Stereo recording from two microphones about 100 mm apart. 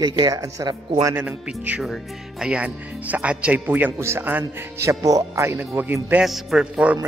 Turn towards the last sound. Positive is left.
turn(degrees=-10)  # may be behind; listen again after turning